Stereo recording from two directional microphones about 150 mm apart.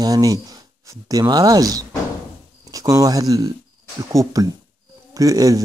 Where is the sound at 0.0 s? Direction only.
25° right (ahead or behind).